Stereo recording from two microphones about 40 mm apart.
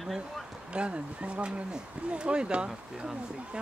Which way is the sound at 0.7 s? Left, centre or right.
Right.